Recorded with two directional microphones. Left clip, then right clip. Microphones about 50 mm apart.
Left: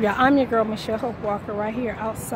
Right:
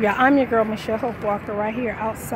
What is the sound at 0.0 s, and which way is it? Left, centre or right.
Speech, centre.